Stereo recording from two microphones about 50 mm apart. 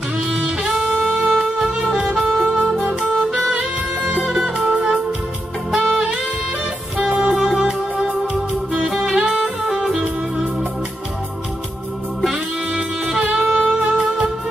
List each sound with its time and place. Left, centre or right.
0.3 s music: centre
1.4 s music: centre
2.9 s music: centre
3.5 s music: right
4.2 s music: centre
7.0 s music: centre
8.8 s music: centre
9.3 s music: centre
12.7 s music: centre